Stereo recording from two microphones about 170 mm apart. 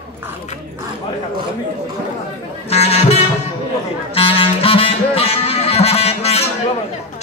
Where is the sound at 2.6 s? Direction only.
40° left (ahead or behind).